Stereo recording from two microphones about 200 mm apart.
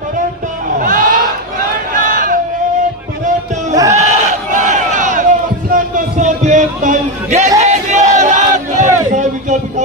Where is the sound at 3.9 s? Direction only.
40° right (ahead or behind).